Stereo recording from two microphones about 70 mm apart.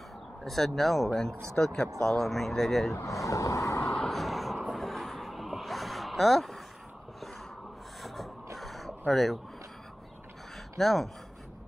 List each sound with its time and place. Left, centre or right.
0.4 s speech: centre
2.9 s speech: left
3.8 s vehicle: centre
8.0 s a sound: centre
10.8 s speech: centre